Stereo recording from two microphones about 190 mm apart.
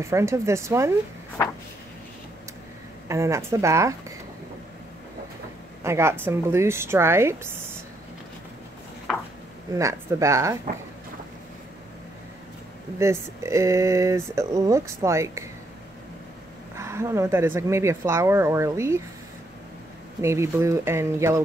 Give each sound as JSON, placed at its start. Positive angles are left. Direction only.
{"t": 0.0, "sound": "speech", "side_deg": -15}
{"t": 3.1, "sound": "speech", "side_deg": -15}
{"t": 5.9, "sound": "speech", "side_deg": -15}
{"t": 9.8, "sound": "speech", "side_deg": -15}
{"t": 13.0, "sound": "speech", "side_deg": -15}
{"t": 16.7, "sound": "speech", "side_deg": -15}
{"t": 20.2, "sound": "speech", "side_deg": -15}